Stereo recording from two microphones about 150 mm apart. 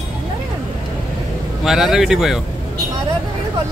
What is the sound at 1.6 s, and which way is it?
Speech, 5° right (ahead or behind).